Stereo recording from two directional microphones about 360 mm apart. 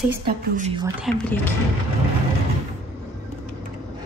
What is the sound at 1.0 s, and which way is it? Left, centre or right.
Speech, centre.